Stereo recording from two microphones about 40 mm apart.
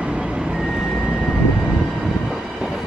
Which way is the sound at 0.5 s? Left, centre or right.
Centre.